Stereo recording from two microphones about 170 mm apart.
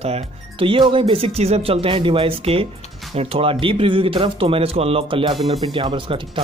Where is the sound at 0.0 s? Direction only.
35° right (ahead or behind).